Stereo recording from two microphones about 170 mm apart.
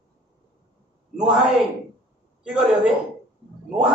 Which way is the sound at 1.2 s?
Centre (ahead or behind).